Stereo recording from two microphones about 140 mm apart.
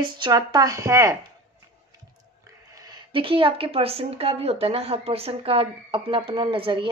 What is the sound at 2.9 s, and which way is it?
A woman's voice, 40° right (ahead or behind).